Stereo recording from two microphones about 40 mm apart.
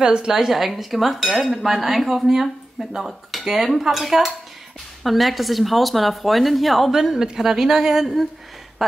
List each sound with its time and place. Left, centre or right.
0.0 s a woman's voice: right
0.3 s cutlery: centre
7.3 s a woman's voice: centre